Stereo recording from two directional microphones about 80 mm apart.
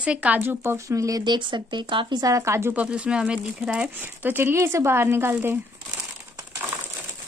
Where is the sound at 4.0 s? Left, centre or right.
Right.